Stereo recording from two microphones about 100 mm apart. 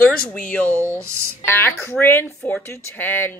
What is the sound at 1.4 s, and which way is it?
Speech, 20° left (ahead or behind).